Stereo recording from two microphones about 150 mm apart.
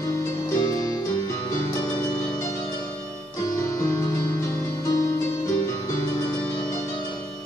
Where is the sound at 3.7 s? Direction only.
20° left (ahead or behind).